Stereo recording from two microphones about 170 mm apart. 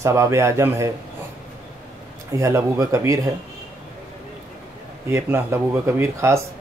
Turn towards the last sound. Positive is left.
turn(degrees=-15)  # may be behind; listen again after turning